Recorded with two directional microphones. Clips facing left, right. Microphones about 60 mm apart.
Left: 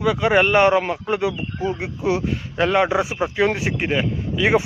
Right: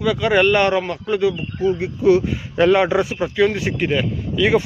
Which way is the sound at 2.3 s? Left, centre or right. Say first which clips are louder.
Right 4 dB; centre.